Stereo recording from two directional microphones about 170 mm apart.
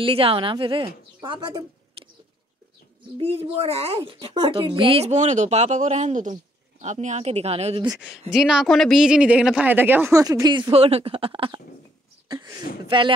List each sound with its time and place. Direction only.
0.0 s a woman's voice: 30° right (ahead or behind)
3.2 s speech: 35° right (ahead or behind)
8.3 s speech: 5° right (ahead or behind); by 13.1 s 30° right (ahead or behind)